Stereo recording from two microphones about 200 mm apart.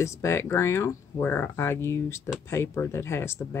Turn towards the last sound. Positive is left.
turn(degrees=10)  # may be behind; listen again after turning